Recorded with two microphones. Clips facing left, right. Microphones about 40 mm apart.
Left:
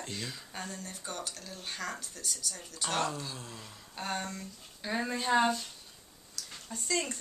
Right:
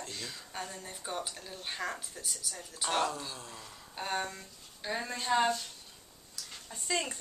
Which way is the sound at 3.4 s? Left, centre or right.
Centre.